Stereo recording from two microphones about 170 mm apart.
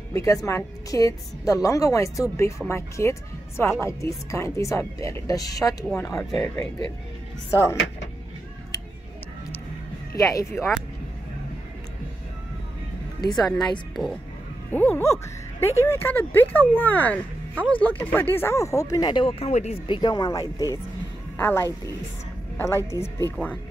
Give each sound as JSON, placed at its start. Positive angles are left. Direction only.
{"t": 0.1, "sound": "a woman's voice", "side_deg": 20}
{"t": 6.3, "sound": "speech", "side_deg": 5}
{"t": 10.1, "sound": "speech", "side_deg": 20}
{"t": 13.2, "sound": "a woman's voice", "side_deg": 25}
{"t": 13.5, "sound": "speech", "side_deg": 0}
{"t": 14.7, "sound": "speech", "side_deg": 10}
{"t": 19.9, "sound": "a woman's voice", "side_deg": 25}